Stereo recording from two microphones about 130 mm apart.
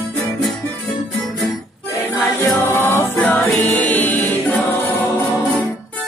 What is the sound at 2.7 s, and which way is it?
Music, 20° left (ahead or behind).